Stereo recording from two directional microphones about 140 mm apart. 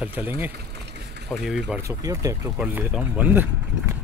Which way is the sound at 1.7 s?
25° right (ahead or behind).